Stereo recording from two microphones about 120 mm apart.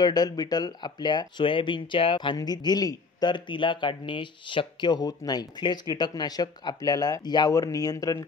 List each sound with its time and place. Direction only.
0.0 s speech: 35° left (ahead or behind)